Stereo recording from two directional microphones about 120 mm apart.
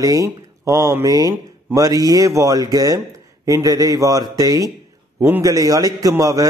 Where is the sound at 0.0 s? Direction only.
30° right (ahead or behind).